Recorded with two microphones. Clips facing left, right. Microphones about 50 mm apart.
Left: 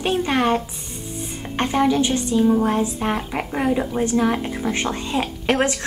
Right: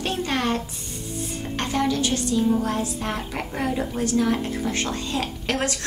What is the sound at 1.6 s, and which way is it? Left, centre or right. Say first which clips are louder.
A woman's voice: left 5 dB; left.